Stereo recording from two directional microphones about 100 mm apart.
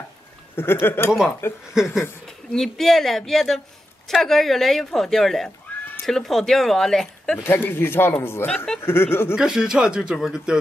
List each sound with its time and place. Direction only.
0.6 s a man's voice: 20° left (ahead or behind)
1.7 s speech: 5° right (ahead or behind)
7.4 s a man's voice: 20° left (ahead or behind)
8.5 s speech: 10° left (ahead or behind)
8.7 s a man's voice: 25° left (ahead or behind)
9.3 s speech: 5° right (ahead or behind)